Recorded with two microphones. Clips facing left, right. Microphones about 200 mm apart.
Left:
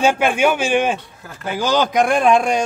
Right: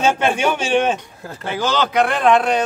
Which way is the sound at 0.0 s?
10° left (ahead or behind).